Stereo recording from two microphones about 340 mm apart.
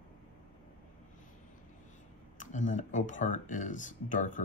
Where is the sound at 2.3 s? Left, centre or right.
Left.